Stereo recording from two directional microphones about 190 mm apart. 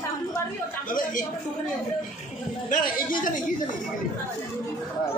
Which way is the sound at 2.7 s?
45° left (ahead or behind).